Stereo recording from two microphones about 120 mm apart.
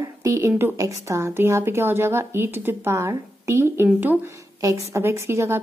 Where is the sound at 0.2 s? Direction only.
25° right (ahead or behind).